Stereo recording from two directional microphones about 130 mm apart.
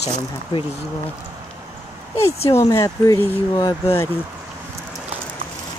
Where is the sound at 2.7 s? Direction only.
30° left (ahead or behind).